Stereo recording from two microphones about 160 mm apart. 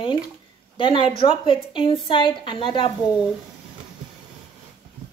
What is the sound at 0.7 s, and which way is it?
A woman's voice, 30° left (ahead or behind).